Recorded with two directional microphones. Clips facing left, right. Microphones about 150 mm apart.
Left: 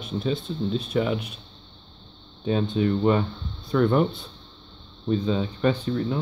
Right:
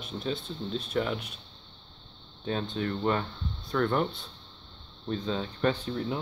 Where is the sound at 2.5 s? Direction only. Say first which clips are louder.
Left 8 dB; 10° left (ahead or behind).